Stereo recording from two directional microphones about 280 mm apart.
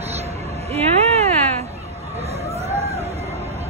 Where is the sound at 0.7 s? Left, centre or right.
Right.